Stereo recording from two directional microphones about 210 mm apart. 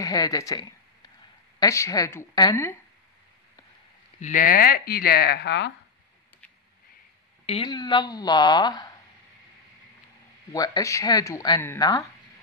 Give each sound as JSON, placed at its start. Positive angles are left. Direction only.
{"t": 0.0, "sound": "speech", "side_deg": 15}
{"t": 4.2, "sound": "speech", "side_deg": 40}
{"t": 7.4, "sound": "speech", "side_deg": 25}
{"t": 10.5, "sound": "speech", "side_deg": 15}